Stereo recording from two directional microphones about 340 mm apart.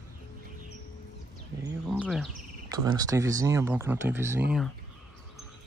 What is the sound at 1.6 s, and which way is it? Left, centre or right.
Speech, centre.